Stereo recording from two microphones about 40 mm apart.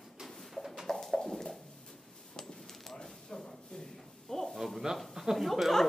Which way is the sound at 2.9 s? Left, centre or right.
Centre.